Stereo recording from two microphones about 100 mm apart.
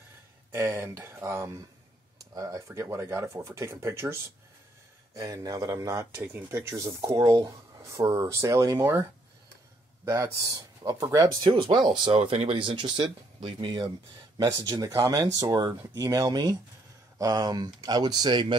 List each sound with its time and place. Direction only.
0.5 s speech: 25° right (ahead or behind)
5.1 s speech: 35° right (ahead or behind)
10.0 s speech: 35° right (ahead or behind)
11.4 s speech: 50° right (ahead or behind)
12.2 s speech: 75° right (ahead or behind); by 13.7 s 60° right (ahead or behind)
13.7 s speech: 40° right (ahead or behind)